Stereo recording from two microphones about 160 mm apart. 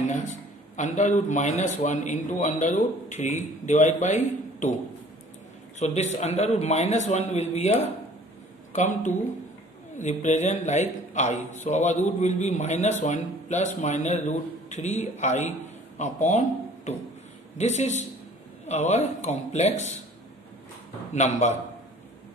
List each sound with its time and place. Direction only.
0.0 s a man's voice: 50° left (ahead or behind)
5.8 s a man's voice: 45° left (ahead or behind)
21.1 s a man's voice: 45° left (ahead or behind)